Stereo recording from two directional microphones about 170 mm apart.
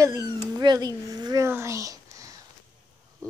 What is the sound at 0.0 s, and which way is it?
Speech, 20° right (ahead or behind).